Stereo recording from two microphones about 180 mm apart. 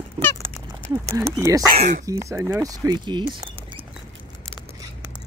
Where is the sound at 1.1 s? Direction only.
15° right (ahead or behind).